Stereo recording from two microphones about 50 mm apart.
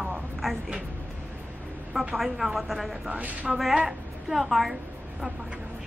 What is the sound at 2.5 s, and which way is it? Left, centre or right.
Speech, centre.